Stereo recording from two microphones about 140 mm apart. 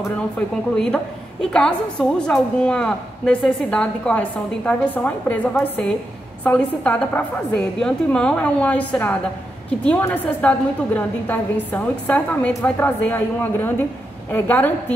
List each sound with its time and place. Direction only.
0.7 s a woman's voice: 5° left (ahead or behind)